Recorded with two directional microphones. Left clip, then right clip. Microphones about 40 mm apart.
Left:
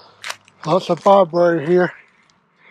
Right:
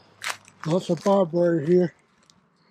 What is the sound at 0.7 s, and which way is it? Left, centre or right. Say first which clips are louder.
Speech: left 8 dB; right.